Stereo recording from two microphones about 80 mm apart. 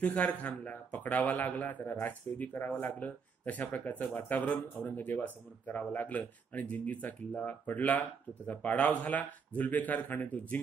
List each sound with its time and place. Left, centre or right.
0.0 s speech: centre